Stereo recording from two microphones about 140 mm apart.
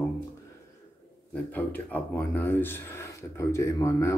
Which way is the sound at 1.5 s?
15° left (ahead or behind).